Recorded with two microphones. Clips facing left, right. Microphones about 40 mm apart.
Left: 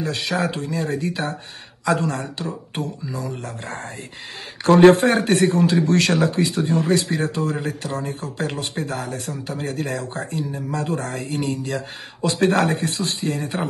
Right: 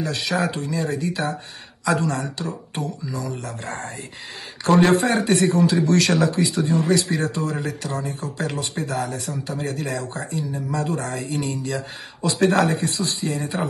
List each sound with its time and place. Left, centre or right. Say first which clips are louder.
0.0 s speech: even; left
4.6 s speech: left 5 dB; left